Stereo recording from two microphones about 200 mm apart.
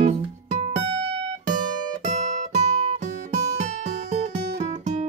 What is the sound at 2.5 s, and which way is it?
Music, 35° right (ahead or behind).